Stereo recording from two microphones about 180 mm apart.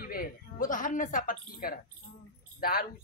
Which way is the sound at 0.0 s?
55° left (ahead or behind).